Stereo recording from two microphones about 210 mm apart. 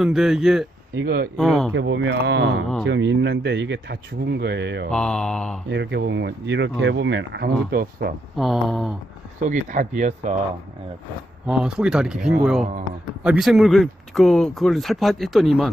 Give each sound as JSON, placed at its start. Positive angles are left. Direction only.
{"t": 0.0, "sound": "speech", "side_deg": 0}
{"t": 1.0, "sound": "speech", "side_deg": -50}
{"t": 1.3, "sound": "speech", "side_deg": 0}
{"t": 1.7, "sound": "speech", "side_deg": -65}
{"t": 4.9, "sound": "speech", "side_deg": 5}
{"t": 5.7, "sound": "speech", "side_deg": -55}
{"t": 8.4, "sound": "speech", "side_deg": 0}
{"t": 9.4, "sound": "speech", "side_deg": -35}
{"t": 11.4, "sound": "speech", "side_deg": -5}